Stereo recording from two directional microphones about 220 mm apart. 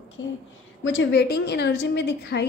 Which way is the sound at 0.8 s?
60° left (ahead or behind).